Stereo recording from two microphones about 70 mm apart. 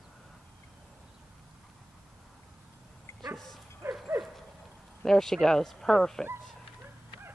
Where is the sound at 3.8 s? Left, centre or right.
Right.